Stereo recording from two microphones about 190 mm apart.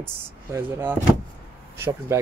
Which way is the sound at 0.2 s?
10° right (ahead or behind).